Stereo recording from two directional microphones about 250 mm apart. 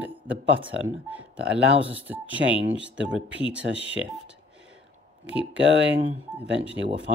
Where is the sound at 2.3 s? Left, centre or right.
Right.